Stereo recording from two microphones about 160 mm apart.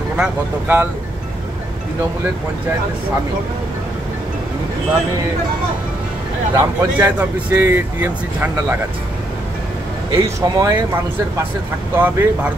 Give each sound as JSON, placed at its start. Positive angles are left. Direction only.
{"t": 0.2, "sound": "speech", "side_deg": -10}
{"t": 6.5, "sound": "speech", "side_deg": -15}
{"t": 10.1, "sound": "speech", "side_deg": -25}
{"t": 11.9, "sound": "speech", "side_deg": -10}